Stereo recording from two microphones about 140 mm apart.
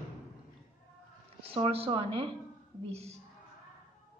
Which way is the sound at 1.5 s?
45° right (ahead or behind).